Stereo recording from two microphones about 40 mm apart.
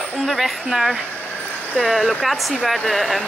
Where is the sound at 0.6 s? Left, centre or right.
Centre.